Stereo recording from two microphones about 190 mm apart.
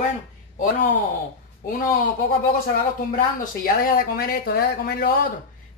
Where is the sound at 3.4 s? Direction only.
50° left (ahead or behind).